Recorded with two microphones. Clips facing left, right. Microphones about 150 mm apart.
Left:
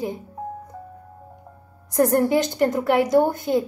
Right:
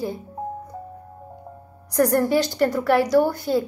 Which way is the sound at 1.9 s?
20° left (ahead or behind).